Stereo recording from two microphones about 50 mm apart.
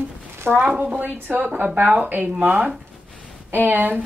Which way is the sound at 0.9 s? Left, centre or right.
Right.